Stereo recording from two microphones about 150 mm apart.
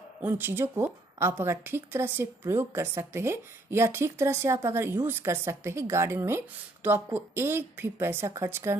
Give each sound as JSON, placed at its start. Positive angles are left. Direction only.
{"t": 0.2, "sound": "a woman's voice", "side_deg": -15}